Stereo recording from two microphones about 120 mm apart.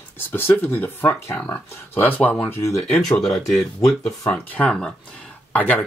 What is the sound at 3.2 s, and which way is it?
Speech, centre (ahead or behind).